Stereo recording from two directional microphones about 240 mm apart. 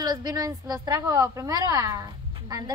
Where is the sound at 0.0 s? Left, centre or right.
Centre.